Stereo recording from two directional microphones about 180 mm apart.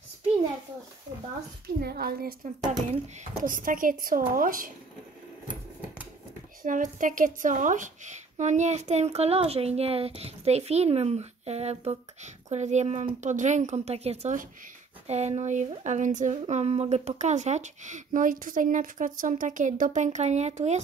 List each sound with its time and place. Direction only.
1.8 s speech: 60° right (ahead or behind)
3.4 s a woman's voice: 50° right (ahead or behind)
6.6 s speech: 45° right (ahead or behind)